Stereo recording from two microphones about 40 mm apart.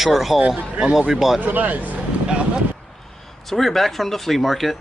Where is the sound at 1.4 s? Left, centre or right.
Right.